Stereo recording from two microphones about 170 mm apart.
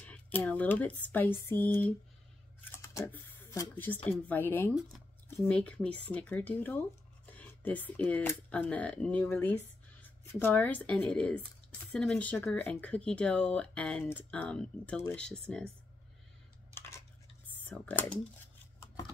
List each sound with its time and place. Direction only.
0.0 s speech: 5° left (ahead or behind)
2.7 s a sound: 15° left (ahead or behind)
4.3 s speech: 10° left (ahead or behind)
17.6 s speech: 10° left (ahead or behind)